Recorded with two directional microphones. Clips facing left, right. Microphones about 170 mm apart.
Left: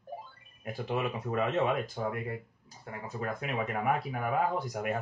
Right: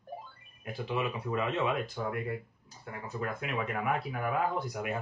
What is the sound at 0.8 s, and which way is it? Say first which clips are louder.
Speech: left 1 dB; 50° left (ahead or behind).